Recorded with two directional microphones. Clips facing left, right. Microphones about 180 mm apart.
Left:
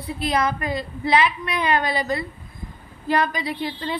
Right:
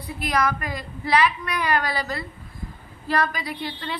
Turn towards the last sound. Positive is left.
turn(degrees=25)  # may be behind; listen again after turning